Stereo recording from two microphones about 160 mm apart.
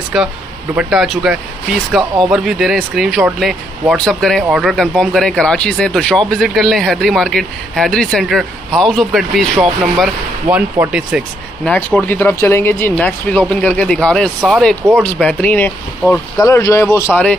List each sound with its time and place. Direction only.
0.1 s speech: 5° right (ahead or behind)
2.0 s speech: 25° right (ahead or behind)
2.3 s speech: centre (ahead or behind)
11.7 s speech: 10° left (ahead or behind); by 15.2 s 10° right (ahead or behind)
15.2 s speech: 10° left (ahead or behind)